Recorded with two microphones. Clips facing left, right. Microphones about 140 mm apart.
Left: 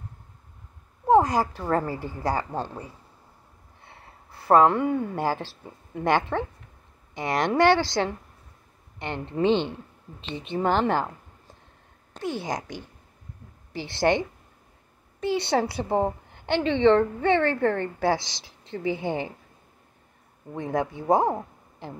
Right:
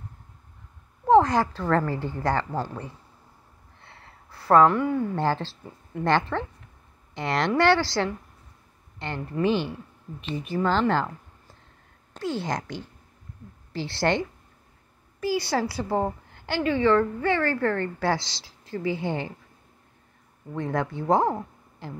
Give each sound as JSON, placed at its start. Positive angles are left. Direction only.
{"t": 1.0, "sound": "a woman's voice", "side_deg": 10}
{"t": 3.8, "sound": "a sound", "side_deg": 15}
{"t": 5.1, "sound": "a woman's voice", "side_deg": 10}
{"t": 12.2, "sound": "a woman's voice", "side_deg": 15}
{"t": 20.5, "sound": "speech", "side_deg": 15}